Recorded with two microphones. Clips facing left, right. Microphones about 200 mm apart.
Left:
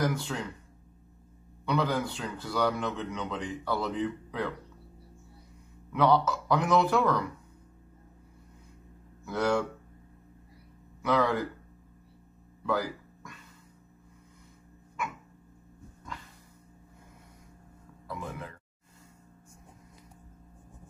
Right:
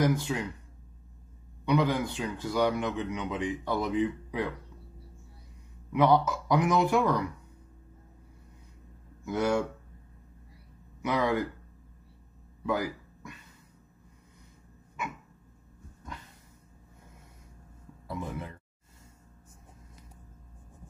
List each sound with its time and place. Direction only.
0.0 s speech: 15° right (ahead or behind)
1.7 s speech: 15° right (ahead or behind)
5.9 s speech: 15° right (ahead or behind)
9.2 s speech: 20° right (ahead or behind)
11.0 s speech: 15° right (ahead or behind)
12.6 s a sound: 15° right (ahead or behind)
18.0 s speech: 25° right (ahead or behind)